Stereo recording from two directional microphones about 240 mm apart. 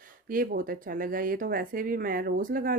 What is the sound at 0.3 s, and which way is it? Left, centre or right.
Speech, right.